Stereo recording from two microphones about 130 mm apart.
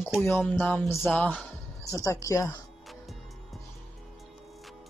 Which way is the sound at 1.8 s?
25° left (ahead or behind).